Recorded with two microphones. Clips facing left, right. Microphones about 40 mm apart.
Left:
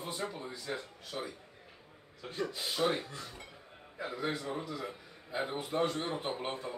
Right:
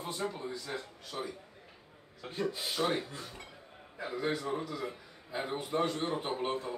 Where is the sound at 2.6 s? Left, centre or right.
Centre.